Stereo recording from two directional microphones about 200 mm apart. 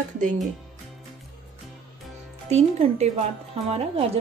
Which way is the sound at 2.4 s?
35° right (ahead or behind).